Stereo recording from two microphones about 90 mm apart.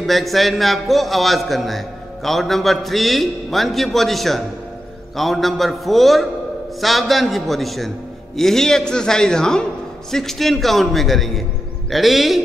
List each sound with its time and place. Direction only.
0.0 s a man's voice: centre (ahead or behind)